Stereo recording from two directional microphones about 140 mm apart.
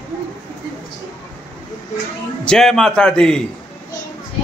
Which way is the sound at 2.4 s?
5° left (ahead or behind).